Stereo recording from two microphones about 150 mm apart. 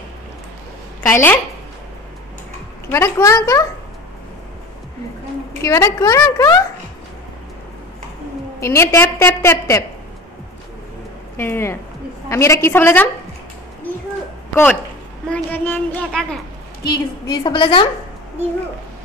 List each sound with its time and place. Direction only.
1.0 s a woman's voice: 15° left (ahead or behind)
2.9 s a woman's voice: 20° left (ahead or behind)
5.6 s a woman's voice: 20° left (ahead or behind)
8.5 s a woman's voice: 20° left (ahead or behind)
11.3 s a woman's voice: 15° left (ahead or behind)
14.5 s a woman's voice: 10° left (ahead or behind)
17.3 s a woman's voice: 35° left (ahead or behind)